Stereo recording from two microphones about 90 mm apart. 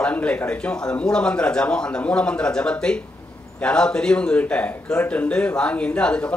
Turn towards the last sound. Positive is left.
turn(degrees=10)  # may be behind; listen again after turning